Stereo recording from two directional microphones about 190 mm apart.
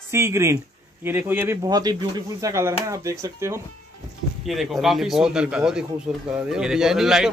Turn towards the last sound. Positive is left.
turn(degrees=-5)  # may be behind; listen again after turning